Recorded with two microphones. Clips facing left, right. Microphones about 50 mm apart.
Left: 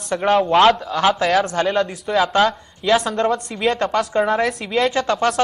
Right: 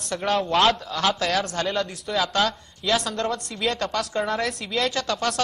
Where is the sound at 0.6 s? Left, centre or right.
Centre.